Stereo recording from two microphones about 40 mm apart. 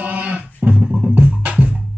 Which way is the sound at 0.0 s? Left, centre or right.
Right.